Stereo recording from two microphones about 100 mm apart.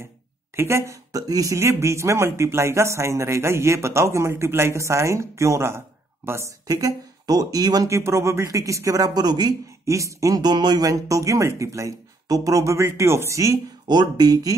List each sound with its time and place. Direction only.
0.6 s speech: 25° right (ahead or behind)
6.7 s speech: 40° right (ahead or behind)
9.8 s speech: 30° right (ahead or behind)
13.8 s speech: 45° right (ahead or behind)